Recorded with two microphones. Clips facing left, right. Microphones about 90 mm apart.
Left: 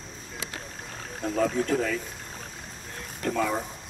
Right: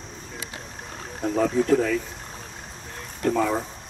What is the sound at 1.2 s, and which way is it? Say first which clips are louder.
Speech: right 4 dB; 5° right (ahead or behind).